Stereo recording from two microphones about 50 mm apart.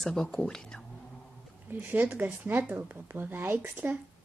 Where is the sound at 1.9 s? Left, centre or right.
Right.